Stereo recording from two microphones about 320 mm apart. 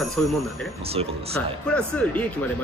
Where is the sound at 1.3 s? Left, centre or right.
Centre.